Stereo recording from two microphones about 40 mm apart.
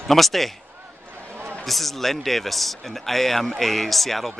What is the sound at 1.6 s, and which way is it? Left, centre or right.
Speech, centre.